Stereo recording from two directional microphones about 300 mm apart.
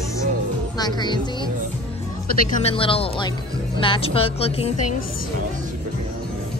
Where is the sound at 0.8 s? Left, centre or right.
Centre.